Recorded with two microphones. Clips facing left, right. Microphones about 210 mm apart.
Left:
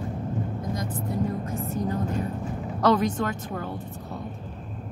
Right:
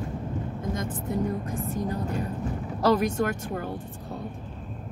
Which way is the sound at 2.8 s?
10° right (ahead or behind).